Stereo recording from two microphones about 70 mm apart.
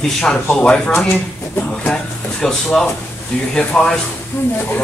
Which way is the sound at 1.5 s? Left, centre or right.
Left.